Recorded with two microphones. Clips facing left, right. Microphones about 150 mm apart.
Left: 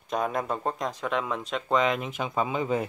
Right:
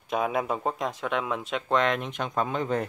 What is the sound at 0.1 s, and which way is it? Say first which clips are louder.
Speech: right 1 dB; 5° right (ahead or behind).